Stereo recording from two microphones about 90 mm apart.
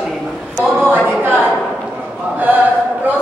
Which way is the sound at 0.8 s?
25° right (ahead or behind).